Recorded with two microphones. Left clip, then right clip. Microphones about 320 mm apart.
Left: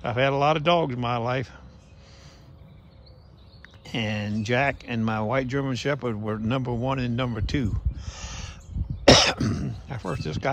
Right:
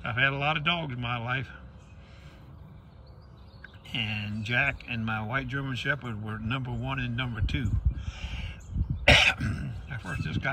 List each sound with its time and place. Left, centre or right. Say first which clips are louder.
0.0 s speech: left 5 dB; centre
4.0 s speech: left 4 dB; centre
9.0 s throat clearing: left 3 dB; centre